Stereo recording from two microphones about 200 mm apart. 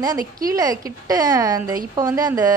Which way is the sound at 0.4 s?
20° right (ahead or behind).